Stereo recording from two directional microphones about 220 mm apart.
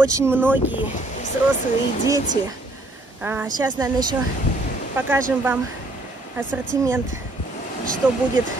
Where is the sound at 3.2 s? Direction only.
10° right (ahead or behind).